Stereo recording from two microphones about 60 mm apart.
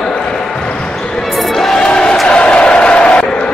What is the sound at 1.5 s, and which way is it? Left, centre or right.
Crowd, centre.